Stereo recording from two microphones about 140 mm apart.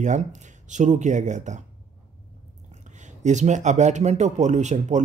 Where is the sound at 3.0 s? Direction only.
60° right (ahead or behind).